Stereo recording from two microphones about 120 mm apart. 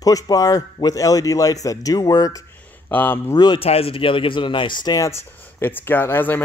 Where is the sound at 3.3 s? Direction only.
35° left (ahead or behind).